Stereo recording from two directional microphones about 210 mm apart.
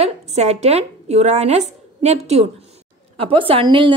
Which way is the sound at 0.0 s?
30° right (ahead or behind).